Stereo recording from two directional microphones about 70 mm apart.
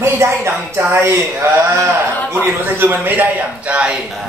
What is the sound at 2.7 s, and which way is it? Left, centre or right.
A man's voice, right.